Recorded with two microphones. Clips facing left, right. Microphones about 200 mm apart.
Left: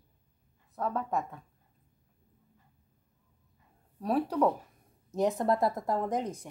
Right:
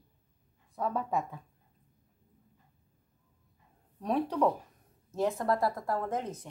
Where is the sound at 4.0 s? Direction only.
5° left (ahead or behind).